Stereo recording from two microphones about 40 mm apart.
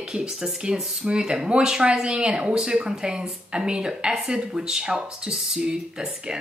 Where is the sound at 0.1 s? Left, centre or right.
Centre.